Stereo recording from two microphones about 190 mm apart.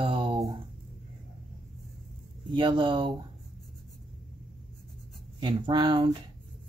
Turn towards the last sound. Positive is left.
turn(degrees=-25)  # may be behind; listen again after turning